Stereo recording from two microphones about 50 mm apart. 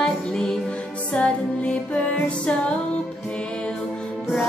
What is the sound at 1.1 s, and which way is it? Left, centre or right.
Music, left.